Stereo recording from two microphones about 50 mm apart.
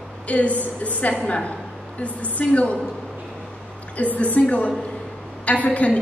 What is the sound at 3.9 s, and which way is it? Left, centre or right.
A woman's voice, left.